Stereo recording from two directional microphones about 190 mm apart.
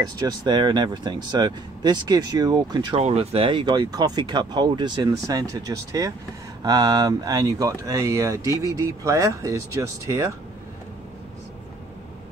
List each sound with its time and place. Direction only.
0.3 s speech: 20° right (ahead or behind)
3.0 s speech: 35° right (ahead or behind); by 10.3 s 15° right (ahead or behind)